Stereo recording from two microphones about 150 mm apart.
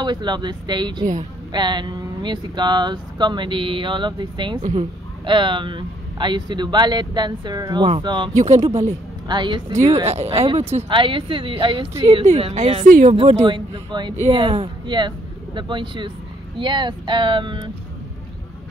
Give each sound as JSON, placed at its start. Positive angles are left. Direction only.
{"t": 0.0, "sound": "speech", "side_deg": -30}
{"t": 8.4, "sound": "speech", "side_deg": -45}
{"t": 9.3, "sound": "speech", "side_deg": -30}
{"t": 10.0, "sound": "speech", "side_deg": -45}
{"t": 12.8, "sound": "speech", "side_deg": -65}
{"t": 13.1, "sound": "speech", "side_deg": -40}